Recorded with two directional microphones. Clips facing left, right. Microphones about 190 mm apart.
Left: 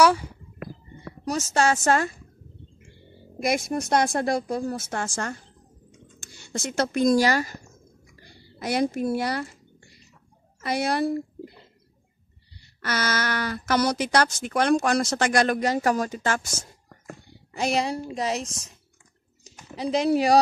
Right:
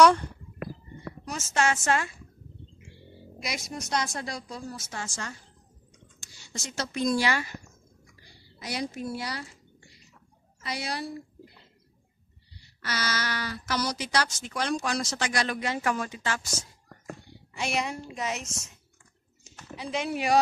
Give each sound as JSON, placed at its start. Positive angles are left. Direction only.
{"t": 0.0, "sound": "speech", "side_deg": 5}
{"t": 1.2, "sound": "a woman's voice", "side_deg": 40}
{"t": 3.3, "sound": "a woman's voice", "side_deg": 55}
{"t": 8.3, "sound": "speech", "side_deg": 55}
{"t": 10.6, "sound": "speech", "side_deg": 55}
{"t": 12.8, "sound": "a woman's voice", "side_deg": 55}
{"t": 19.8, "sound": "a woman's voice", "side_deg": 35}